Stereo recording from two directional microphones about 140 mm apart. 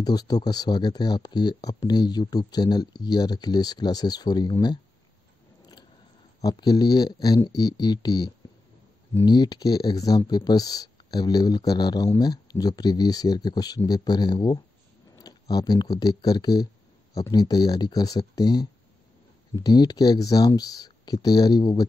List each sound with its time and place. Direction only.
0.0 s speech: 30° left (ahead or behind)
6.4 s speech: 30° left (ahead or behind)